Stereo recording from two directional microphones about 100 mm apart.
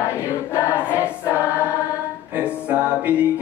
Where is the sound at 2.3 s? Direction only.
15° right (ahead or behind).